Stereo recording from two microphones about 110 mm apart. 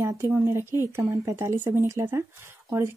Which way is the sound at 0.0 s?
25° right (ahead or behind).